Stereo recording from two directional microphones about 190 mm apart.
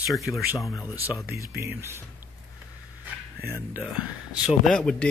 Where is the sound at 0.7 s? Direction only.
15° left (ahead or behind).